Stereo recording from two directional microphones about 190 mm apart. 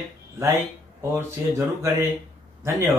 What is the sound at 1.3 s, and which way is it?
Speech, 15° right (ahead or behind).